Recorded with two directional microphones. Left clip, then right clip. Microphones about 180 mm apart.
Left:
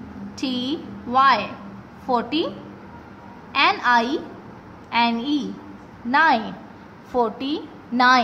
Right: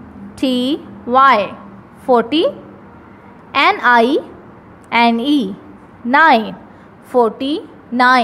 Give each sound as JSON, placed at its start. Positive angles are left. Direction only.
{"t": 0.4, "sound": "a woman's voice", "side_deg": -35}
{"t": 3.5, "sound": "a woman's voice", "side_deg": -40}
{"t": 7.1, "sound": "a woman's voice", "side_deg": -25}